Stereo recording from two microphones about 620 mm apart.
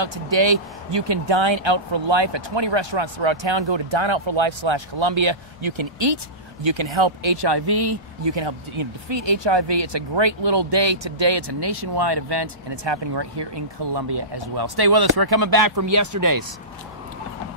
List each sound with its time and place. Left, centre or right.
0.0 s speech: right